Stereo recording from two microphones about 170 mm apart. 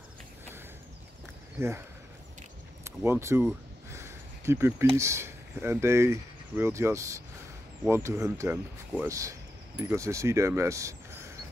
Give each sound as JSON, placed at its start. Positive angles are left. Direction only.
{"t": 1.6, "sound": "speech", "side_deg": -15}
{"t": 2.8, "sound": "speech", "side_deg": -15}
{"t": 3.9, "sound": "a sound", "side_deg": -15}
{"t": 4.9, "sound": "speech", "side_deg": -15}